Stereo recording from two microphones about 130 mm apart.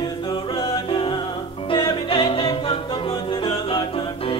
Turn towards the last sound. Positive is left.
turn(degrees=45)  # may be behind; listen again after turning